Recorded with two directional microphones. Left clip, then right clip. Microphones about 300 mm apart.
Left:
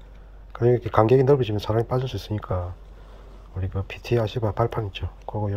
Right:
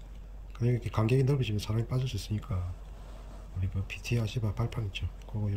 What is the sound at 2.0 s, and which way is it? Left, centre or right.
Speech, centre.